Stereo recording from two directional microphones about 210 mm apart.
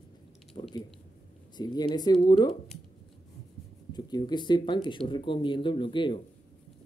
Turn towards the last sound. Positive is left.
turn(degrees=25)  # may be behind; listen again after turning